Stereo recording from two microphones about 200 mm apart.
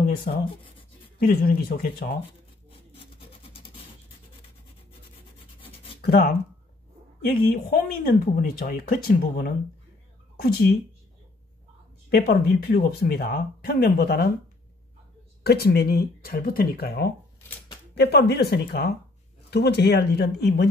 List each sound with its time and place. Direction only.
0.7 s writing: 25° left (ahead or behind)
1.2 s speech: 50° left (ahead or behind)
2.9 s a sound: 30° left (ahead or behind)
5.9 s speech: 50° left (ahead or behind)
12.1 s speech: 50° left (ahead or behind)
15.4 s speech: 55° left (ahead or behind)